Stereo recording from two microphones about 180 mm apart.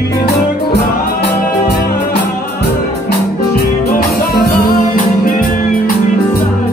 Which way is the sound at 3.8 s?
55° left (ahead or behind).